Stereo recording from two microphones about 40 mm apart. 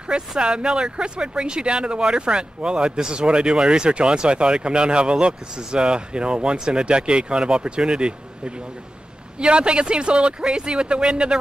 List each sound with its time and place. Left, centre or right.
0.4 s speech: right